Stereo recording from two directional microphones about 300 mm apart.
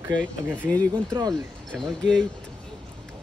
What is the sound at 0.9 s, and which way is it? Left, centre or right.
Speech, centre.